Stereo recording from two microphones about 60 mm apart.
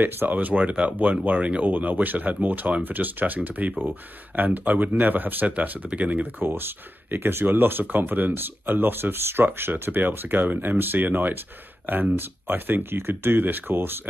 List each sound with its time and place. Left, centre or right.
0.0 s speech: right
6.4 s speech: right